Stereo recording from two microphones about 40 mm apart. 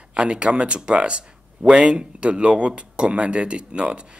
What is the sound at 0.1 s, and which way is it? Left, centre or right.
Speech, right.